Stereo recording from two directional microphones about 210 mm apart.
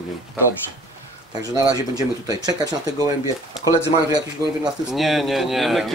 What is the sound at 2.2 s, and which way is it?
Speech, 20° right (ahead or behind).